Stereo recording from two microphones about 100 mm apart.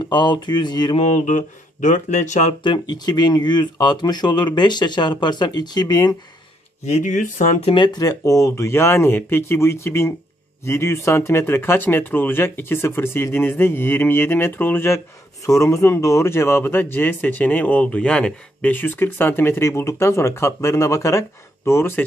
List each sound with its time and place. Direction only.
0.0 s speech: 50° left (ahead or behind)
2.6 s speech: 45° left (ahead or behind)
7.6 s speech: 55° left (ahead or behind)
8.0 s speech: 35° left (ahead or behind)
15.4 s speech: 35° left (ahead or behind)